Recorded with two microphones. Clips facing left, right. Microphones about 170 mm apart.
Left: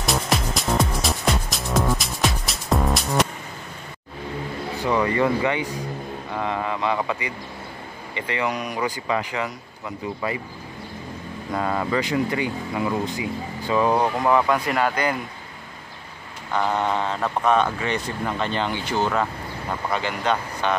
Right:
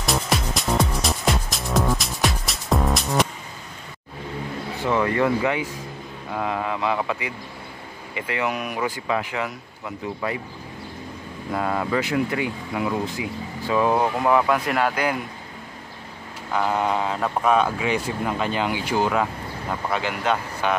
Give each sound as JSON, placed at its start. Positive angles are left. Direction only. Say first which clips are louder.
{"t": 0.0, "sound": "music", "louder": "even", "side_deg": 0}
{"t": 4.7, "sound": "speech", "louder": "even", "side_deg": 0}
{"t": 11.5, "sound": "speech", "louder": "even", "side_deg": 0}
{"t": 16.5, "sound": "speech", "louder": "even", "side_deg": -5}